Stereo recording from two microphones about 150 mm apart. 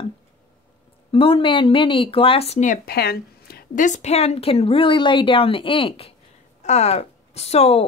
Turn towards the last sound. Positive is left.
turn(degrees=45)  # may be behind; listen again after turning